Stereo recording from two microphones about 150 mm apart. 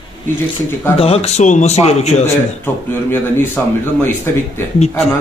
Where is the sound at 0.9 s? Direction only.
40° left (ahead or behind).